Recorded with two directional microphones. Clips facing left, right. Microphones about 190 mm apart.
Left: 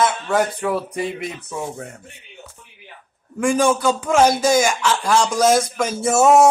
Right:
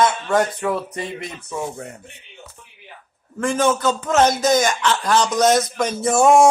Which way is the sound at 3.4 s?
10° left (ahead or behind).